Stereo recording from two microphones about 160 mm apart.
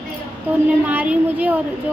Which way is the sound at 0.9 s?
10° right (ahead or behind).